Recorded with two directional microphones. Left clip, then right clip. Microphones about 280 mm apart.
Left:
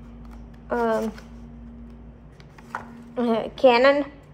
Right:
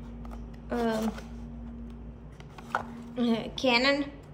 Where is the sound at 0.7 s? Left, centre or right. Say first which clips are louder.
Left 7 dB; centre.